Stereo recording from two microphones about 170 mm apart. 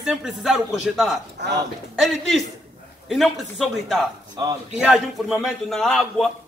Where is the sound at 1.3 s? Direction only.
90° right.